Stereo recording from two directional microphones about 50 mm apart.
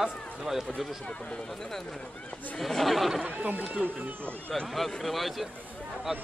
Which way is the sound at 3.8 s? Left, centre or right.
Right.